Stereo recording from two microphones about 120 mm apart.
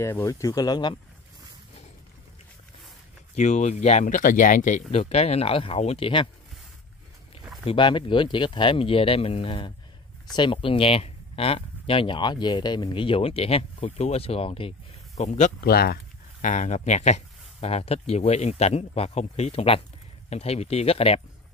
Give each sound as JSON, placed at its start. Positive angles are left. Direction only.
{"t": 0.0, "sound": "speech", "side_deg": 25}
{"t": 3.3, "sound": "speech", "side_deg": 75}
{"t": 7.6, "sound": "speech", "side_deg": 45}
{"t": 15.1, "sound": "speech", "side_deg": 75}
{"t": 16.3, "sound": "speech", "side_deg": 90}